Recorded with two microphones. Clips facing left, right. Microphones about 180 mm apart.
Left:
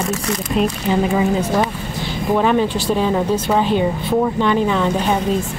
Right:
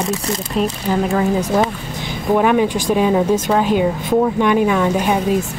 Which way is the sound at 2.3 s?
10° right (ahead or behind).